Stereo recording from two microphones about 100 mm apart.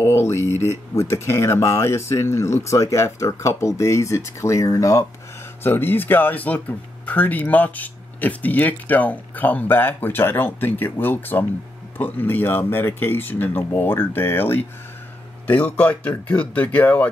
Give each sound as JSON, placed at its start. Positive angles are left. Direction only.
{"t": 0.0, "sound": "speech", "side_deg": 25}
{"t": 5.6, "sound": "speech", "side_deg": 20}